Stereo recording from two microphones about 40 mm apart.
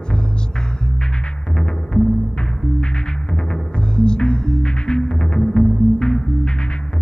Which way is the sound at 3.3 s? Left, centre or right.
Left.